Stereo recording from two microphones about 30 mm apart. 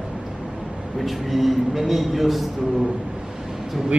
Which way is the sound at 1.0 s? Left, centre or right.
Centre.